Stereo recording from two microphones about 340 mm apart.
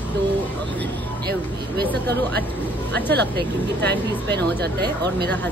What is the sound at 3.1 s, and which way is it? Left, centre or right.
Speech, right.